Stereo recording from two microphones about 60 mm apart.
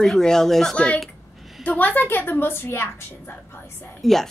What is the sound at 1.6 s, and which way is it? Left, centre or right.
A woman's voice, left.